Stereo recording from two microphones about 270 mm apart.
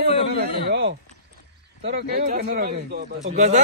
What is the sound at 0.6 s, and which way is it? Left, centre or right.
Speech, right.